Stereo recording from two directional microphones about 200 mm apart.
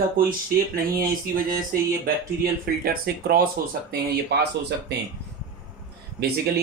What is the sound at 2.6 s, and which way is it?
Speech, 50° right (ahead or behind).